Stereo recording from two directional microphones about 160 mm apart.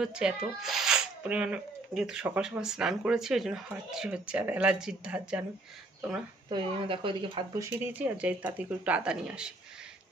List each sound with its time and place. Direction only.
0.0 s speech: 5° right (ahead or behind)
6.5 s speech: 30° right (ahead or behind)
7.5 s speech: 10° right (ahead or behind)